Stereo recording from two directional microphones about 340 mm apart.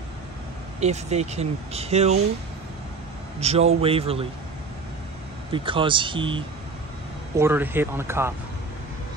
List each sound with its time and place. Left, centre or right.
0.7 s speech: centre
3.3 s a man's voice: centre
5.5 s speech: centre